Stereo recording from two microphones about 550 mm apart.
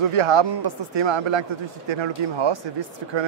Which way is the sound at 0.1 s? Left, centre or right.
Right.